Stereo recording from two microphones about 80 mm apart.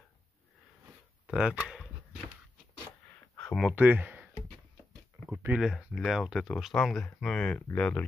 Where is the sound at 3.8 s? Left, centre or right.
Right.